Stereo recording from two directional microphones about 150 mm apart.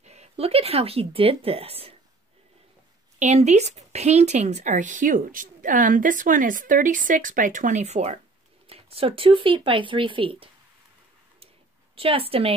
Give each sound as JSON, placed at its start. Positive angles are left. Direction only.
{"t": 0.0, "sound": "speech", "side_deg": -45}
{"t": 3.2, "sound": "speech", "side_deg": -50}
{"t": 11.9, "sound": "speech", "side_deg": -40}